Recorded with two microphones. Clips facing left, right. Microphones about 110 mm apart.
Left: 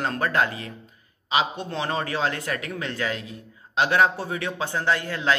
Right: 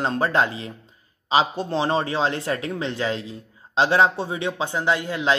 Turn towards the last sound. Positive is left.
turn(degrees=-20)  # may be behind; listen again after turning